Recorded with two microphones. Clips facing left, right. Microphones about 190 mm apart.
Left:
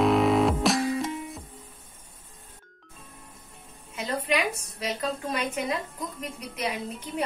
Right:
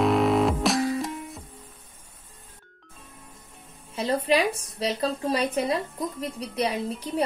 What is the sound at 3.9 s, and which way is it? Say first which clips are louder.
A woman's voice: right 5 dB; 30° right (ahead or behind).